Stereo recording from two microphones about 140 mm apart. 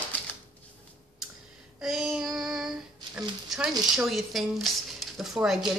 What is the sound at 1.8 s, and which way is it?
Child singing, centre (ahead or behind).